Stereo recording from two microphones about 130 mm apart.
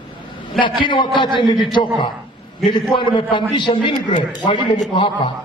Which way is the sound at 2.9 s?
40° left (ahead or behind).